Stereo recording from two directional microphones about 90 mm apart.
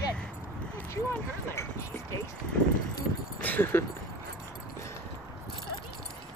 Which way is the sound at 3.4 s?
20° left (ahead or behind).